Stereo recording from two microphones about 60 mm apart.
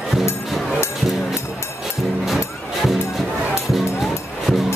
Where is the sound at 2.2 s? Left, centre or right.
Centre.